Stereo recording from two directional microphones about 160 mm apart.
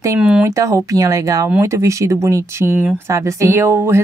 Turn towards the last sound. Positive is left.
turn(degrees=-15)  # may be behind; listen again after turning